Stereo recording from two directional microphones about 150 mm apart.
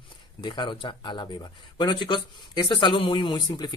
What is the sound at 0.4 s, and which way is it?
Speech, 30° left (ahead or behind).